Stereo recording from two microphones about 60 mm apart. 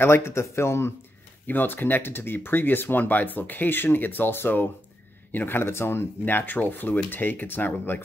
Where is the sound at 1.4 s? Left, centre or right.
Left.